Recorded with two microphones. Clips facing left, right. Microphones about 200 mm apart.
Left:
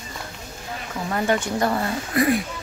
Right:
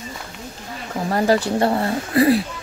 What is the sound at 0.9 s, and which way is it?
Speech, 35° right (ahead or behind).